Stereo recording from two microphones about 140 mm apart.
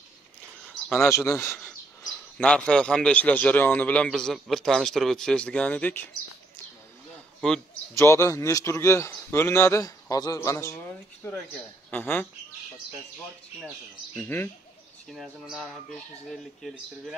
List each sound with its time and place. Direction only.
1.0 s speech: 20° left (ahead or behind)
2.0 s a man's voice: 5° left (ahead or behind)
7.9 s speech: 20° left (ahead or behind)
14.1 s a man's voice: 15° left (ahead or behind)
15.0 s speech: centre (ahead or behind)